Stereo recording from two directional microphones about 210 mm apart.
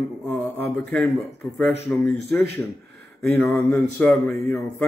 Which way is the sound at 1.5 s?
5° left (ahead or behind).